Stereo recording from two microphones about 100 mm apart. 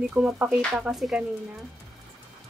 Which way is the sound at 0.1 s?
10° right (ahead or behind).